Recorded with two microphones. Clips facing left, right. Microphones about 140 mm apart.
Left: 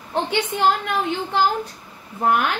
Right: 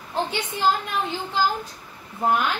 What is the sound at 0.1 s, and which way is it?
Speech, 65° left (ahead or behind).